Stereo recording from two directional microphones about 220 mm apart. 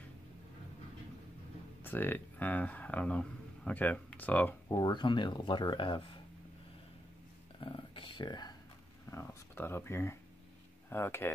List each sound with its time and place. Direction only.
1.8 s speech: 10° left (ahead or behind)
7.6 s a sound: 20° left (ahead or behind)
10.9 s speech: 10° left (ahead or behind)